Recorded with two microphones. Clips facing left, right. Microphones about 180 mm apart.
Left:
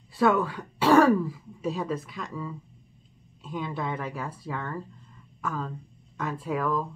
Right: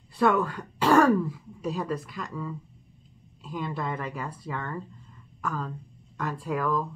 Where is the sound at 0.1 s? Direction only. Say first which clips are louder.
Even; 5° left (ahead or behind).